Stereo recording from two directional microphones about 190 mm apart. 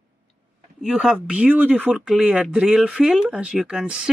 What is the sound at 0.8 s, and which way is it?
Speech, centre (ahead or behind).